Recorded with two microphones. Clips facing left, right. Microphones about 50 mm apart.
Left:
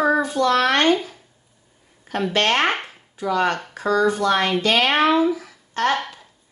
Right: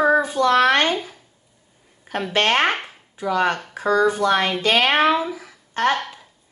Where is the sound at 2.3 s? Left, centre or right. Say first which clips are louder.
Right 1 dB; centre.